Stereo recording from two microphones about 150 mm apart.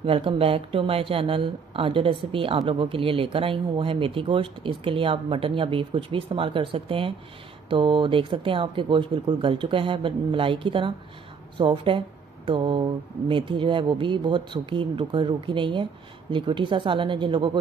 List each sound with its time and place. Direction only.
0.0 s speech: 40° right (ahead or behind)